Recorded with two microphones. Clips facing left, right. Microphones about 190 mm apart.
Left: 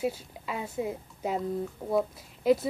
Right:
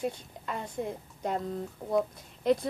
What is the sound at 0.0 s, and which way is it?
Speech, 5° left (ahead or behind).